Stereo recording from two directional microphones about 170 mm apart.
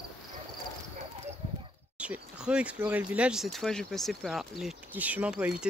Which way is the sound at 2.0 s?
5° right (ahead or behind).